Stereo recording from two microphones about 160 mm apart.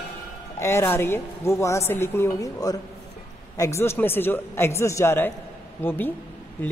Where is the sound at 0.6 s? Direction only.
15° left (ahead or behind).